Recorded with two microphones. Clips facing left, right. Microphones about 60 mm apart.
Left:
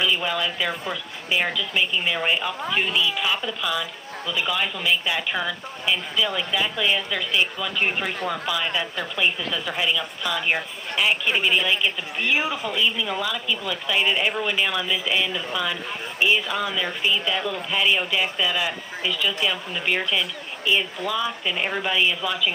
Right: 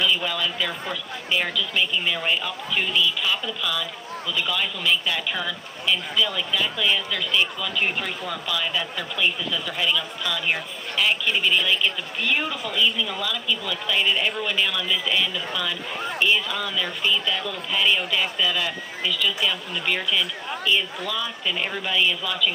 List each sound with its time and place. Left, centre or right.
0.0 s a woman's voice: centre